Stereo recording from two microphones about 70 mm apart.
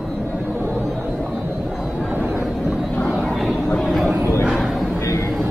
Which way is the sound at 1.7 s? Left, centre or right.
Centre.